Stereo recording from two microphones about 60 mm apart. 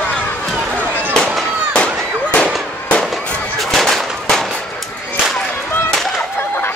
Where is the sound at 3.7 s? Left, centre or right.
Centre.